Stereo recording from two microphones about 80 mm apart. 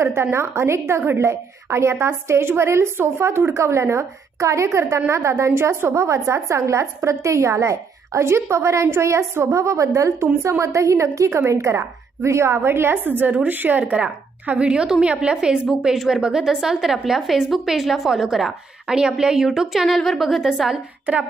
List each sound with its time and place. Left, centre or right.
0.0 s a woman's voice: right; by 20.8 s centre